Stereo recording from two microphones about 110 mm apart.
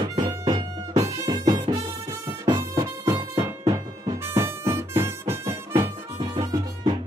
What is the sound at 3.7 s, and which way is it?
Music, 30° right (ahead or behind).